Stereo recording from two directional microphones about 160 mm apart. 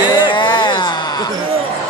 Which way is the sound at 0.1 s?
30° left (ahead or behind).